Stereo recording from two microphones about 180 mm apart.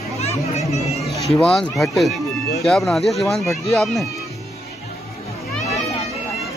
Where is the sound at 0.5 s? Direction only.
35° left (ahead or behind).